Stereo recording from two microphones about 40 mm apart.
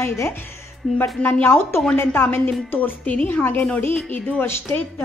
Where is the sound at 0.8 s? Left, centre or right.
Left.